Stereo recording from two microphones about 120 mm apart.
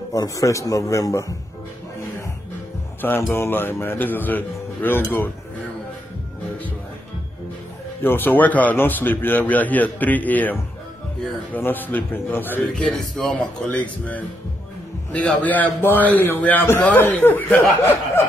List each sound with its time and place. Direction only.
0.1 s a man's voice: 30° left (ahead or behind)
3.0 s a man's voice: 15° left (ahead or behind)
8.0 s a man's voice: 15° left (ahead or behind)
12.7 s a man's voice: 5° left (ahead or behind)